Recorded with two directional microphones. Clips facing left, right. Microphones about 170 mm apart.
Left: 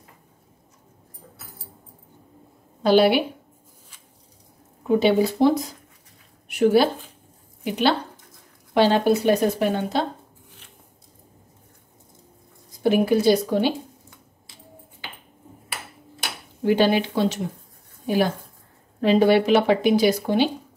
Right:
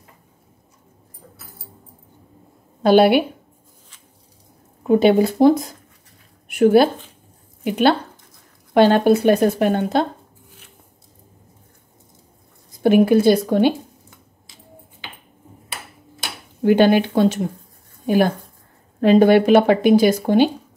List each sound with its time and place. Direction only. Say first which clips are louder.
2.8 s speech: right 4 dB; 55° right (ahead or behind)
4.8 s speech: right 4 dB; 50° right (ahead or behind)
6.4 s a sound: right 4 dB; 55° right (ahead or behind)
7.6 s speech: right 5 dB; 50° right (ahead or behind)
12.8 s speech: right 5 dB; 55° right (ahead or behind)
16.6 s speech: right 5 dB; 55° right (ahead or behind)